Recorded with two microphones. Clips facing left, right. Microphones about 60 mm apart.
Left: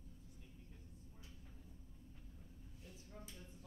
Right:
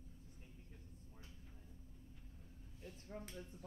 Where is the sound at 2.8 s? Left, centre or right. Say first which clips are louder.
Right 6 dB; right.